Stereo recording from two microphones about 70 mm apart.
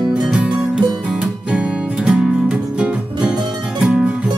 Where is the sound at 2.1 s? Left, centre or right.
Centre.